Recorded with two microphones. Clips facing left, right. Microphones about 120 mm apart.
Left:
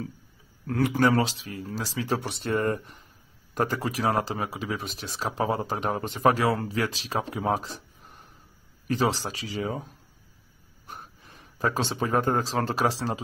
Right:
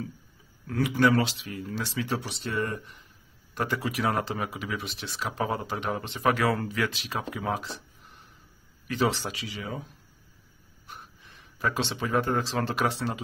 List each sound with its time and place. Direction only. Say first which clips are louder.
0.7 s speech: left 1 dB; 45° left (ahead or behind)